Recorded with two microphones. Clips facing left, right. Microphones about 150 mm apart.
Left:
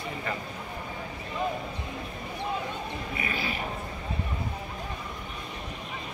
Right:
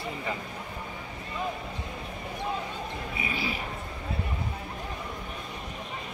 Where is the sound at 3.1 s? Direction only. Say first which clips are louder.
Even; 5° right (ahead or behind).